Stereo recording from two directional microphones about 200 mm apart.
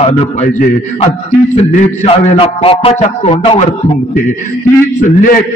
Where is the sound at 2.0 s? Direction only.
30° left (ahead or behind).